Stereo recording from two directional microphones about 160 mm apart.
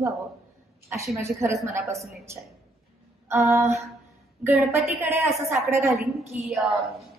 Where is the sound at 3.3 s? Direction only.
20° right (ahead or behind).